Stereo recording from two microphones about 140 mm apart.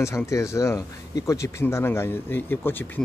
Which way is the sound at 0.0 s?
20° left (ahead or behind).